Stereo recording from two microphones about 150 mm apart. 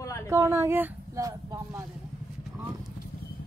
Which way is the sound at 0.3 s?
20° right (ahead or behind).